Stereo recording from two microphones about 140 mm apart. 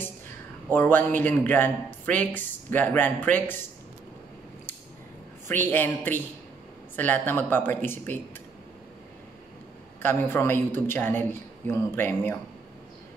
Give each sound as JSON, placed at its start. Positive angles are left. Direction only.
{"t": 0.7, "sound": "speech", "side_deg": 15}
{"t": 5.5, "sound": "speech", "side_deg": 15}
{"t": 10.0, "sound": "speech", "side_deg": 15}